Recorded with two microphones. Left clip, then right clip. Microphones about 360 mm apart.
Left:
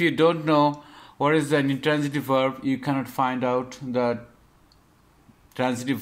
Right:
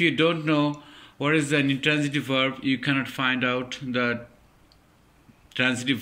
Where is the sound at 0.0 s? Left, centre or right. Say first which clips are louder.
Left 2 dB; left.